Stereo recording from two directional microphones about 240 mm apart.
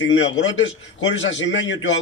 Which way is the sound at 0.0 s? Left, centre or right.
Left.